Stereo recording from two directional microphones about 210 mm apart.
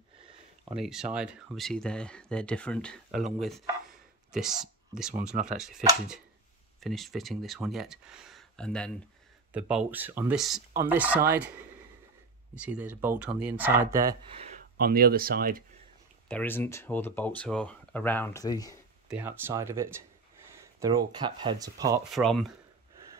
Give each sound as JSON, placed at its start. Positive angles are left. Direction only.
{"t": 0.7, "sound": "speech", "side_deg": 0}
{"t": 14.3, "sound": "a sound", "side_deg": -30}
{"t": 14.8, "sound": "speech", "side_deg": -45}
{"t": 16.3, "sound": "speech", "side_deg": 10}
{"t": 19.0, "sound": "speech", "side_deg": -10}
{"t": 22.1, "sound": "speech", "side_deg": 0}